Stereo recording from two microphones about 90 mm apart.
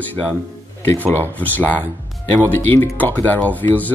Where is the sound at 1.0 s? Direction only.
20° left (ahead or behind).